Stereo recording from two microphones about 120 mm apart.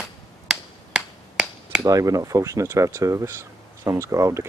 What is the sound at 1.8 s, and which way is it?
Speech, 30° right (ahead or behind).